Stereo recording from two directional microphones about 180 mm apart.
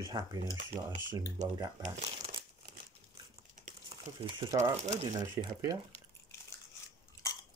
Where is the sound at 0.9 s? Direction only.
40° right (ahead or behind).